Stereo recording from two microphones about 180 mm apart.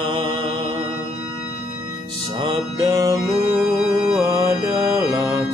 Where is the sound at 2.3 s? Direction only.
25° right (ahead or behind).